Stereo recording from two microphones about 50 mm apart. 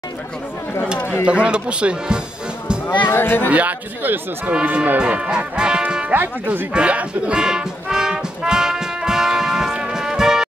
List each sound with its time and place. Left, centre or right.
1.2 s speech: centre
3.1 s speech: left
3.4 s speech: right
4.5 s speech: right
6.1 s speech: right
6.7 s speech: right
7.4 s music: centre